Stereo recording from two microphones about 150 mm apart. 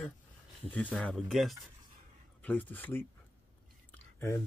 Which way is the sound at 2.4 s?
10° left (ahead or behind).